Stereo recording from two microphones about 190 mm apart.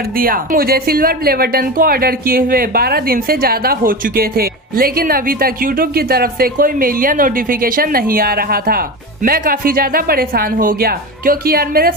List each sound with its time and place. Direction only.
0.1 s a woman's voice: 50° right (ahead or behind)